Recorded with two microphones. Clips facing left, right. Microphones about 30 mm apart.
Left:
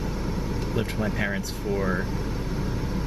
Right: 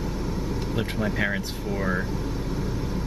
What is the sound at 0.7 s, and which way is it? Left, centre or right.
Speech, centre.